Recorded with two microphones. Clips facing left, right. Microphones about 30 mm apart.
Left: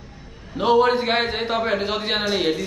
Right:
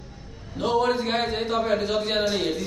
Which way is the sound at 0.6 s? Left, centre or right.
Left.